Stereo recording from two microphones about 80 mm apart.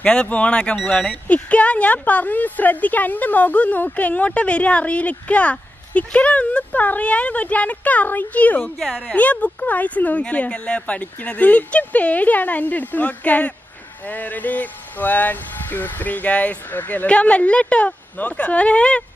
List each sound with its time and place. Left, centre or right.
0.0 s a woman's voice: centre
8.7 s a woman's voice: centre
9.1 s a woman's voice: centre